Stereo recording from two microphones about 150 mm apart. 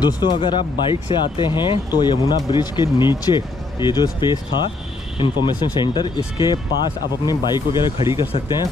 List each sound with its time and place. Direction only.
0.0 s speech: 30° left (ahead or behind)